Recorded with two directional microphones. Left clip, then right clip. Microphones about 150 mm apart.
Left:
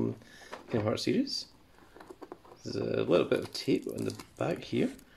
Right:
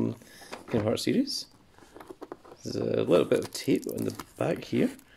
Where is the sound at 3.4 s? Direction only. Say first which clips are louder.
Right 3 dB; 40° right (ahead or behind).